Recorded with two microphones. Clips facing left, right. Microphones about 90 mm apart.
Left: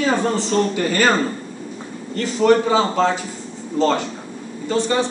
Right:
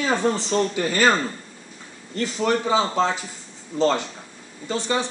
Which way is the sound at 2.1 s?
15° right (ahead or behind).